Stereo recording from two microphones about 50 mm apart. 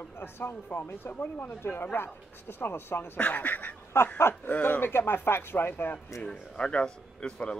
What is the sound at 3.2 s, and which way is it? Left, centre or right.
Speech, left.